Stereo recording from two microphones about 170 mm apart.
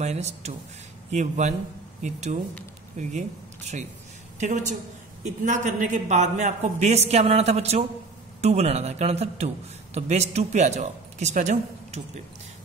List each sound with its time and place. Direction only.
0.0 s a man's voice: 40° right (ahead or behind)